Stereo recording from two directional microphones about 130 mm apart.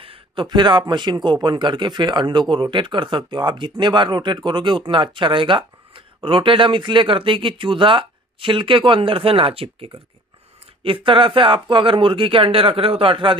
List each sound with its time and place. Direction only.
0.0 s a man's voice: 40° right (ahead or behind)